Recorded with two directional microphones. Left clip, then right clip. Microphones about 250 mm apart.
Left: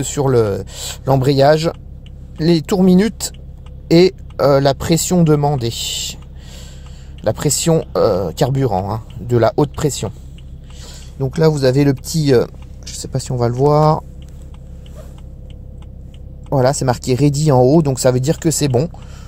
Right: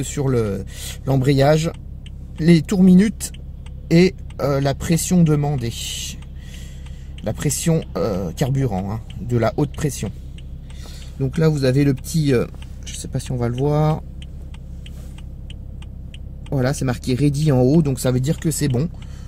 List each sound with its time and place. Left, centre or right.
0.0 s speech: left
7.2 s speech: left
11.1 s speech: centre
16.9 s speech: left